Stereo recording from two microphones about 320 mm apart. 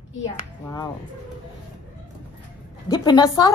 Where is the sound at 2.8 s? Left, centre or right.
Centre.